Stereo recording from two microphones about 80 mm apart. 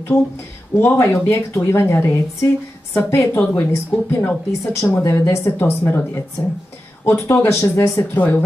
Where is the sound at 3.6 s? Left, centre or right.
Left.